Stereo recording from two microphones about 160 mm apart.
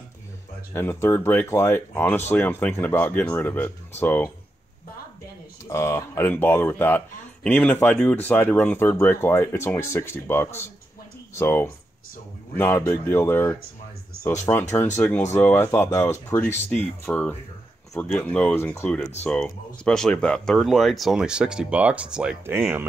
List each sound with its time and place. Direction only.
0.7 s speech: 15° left (ahead or behind)
5.7 s speech: 20° left (ahead or behind); by 22.8 s 15° right (ahead or behind)